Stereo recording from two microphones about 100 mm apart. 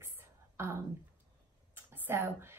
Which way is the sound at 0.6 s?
25° right (ahead or behind).